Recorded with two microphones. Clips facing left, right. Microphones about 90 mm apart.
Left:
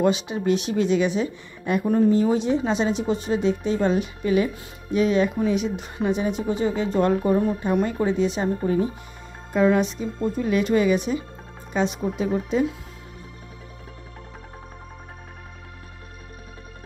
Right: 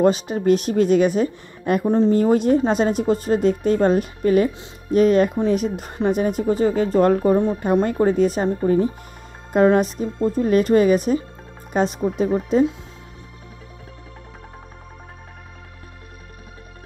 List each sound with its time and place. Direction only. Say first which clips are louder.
0.0 s speech: right 4 dB; 45° right (ahead or behind)